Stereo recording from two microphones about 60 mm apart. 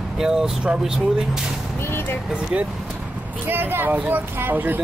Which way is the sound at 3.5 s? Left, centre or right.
Right.